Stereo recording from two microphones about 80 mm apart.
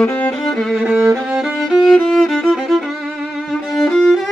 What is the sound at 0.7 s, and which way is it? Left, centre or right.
Music, centre.